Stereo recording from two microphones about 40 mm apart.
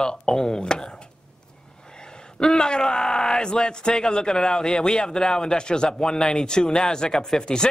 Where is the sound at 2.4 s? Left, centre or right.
Centre.